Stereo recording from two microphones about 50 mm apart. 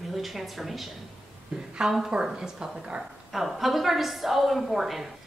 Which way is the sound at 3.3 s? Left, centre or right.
Centre.